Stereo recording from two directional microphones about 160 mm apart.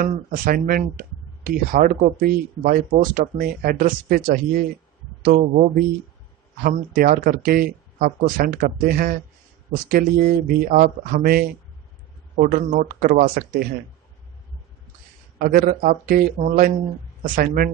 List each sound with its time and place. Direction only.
0.0 s speech: 65° right (ahead or behind)
12.4 s speech: 65° right (ahead or behind)
15.3 s speech: 65° right (ahead or behind)